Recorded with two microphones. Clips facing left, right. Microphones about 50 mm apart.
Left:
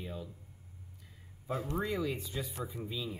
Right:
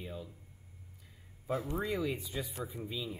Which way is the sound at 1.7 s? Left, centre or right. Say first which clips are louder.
Left 2 dB; centre.